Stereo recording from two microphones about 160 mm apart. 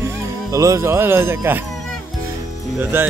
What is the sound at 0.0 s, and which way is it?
Speech, 20° right (ahead or behind).